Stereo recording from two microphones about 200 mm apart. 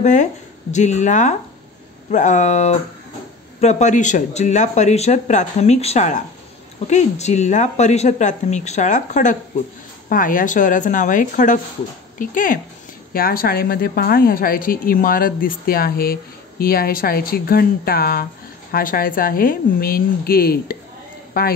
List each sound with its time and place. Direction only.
0.0 s a woman's voice: 35° left (ahead or behind)